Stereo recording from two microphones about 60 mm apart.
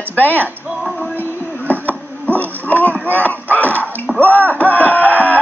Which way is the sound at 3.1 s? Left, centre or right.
Left.